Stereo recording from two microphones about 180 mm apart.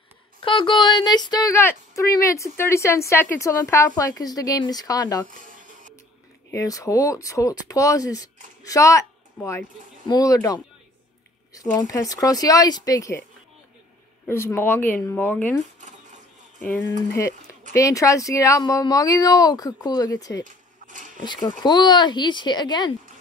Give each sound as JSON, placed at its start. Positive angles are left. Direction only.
{"t": 0.4, "sound": "speech", "side_deg": 30}
{"t": 5.3, "sound": "a sound", "side_deg": -45}
{"t": 6.5, "sound": "speech", "side_deg": 20}
{"t": 14.2, "sound": "speech", "side_deg": 15}
{"t": 17.7, "sound": "speech", "side_deg": 15}
{"t": 20.4, "sound": "zipper", "side_deg": -45}
{"t": 21.6, "sound": "speech", "side_deg": 25}